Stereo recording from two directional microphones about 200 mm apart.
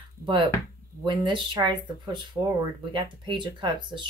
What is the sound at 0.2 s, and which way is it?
Speech, 25° right (ahead or behind).